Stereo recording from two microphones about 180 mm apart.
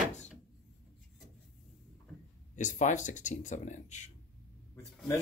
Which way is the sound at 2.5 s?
45° left (ahead or behind).